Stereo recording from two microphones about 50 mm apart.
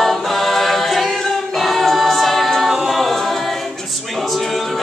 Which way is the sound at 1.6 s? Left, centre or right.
Centre.